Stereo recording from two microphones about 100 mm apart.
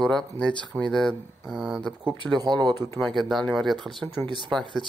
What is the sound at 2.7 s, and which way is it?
Speech, 25° left (ahead or behind).